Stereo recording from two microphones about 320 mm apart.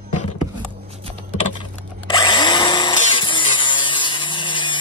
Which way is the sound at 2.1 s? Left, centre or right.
Centre.